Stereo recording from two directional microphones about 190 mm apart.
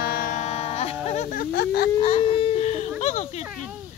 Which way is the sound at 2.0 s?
30° left (ahead or behind).